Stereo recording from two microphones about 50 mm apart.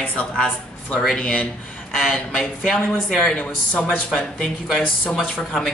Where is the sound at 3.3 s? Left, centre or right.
Left.